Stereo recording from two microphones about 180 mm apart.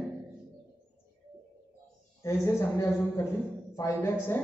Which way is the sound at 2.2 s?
15° left (ahead or behind).